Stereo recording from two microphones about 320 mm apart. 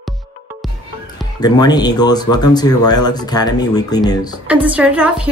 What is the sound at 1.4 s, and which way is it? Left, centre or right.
Speech, centre.